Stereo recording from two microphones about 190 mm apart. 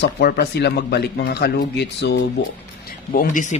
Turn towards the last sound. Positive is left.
turn(degrees=45)  # may be behind; listen again after turning